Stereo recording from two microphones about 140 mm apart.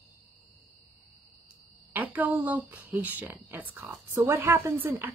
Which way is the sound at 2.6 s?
15° right (ahead or behind).